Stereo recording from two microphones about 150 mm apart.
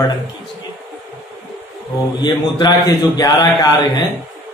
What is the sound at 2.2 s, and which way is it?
A man's voice, 30° left (ahead or behind).